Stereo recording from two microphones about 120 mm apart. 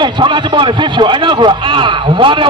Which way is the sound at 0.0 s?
40° right (ahead or behind).